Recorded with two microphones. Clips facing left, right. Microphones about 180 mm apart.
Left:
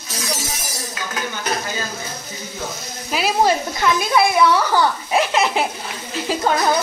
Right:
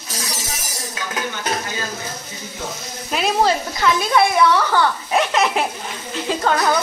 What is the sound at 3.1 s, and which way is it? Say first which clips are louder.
Speech: even; 5° left (ahead or behind).